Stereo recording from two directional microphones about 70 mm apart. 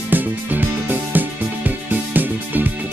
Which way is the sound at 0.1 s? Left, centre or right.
Right.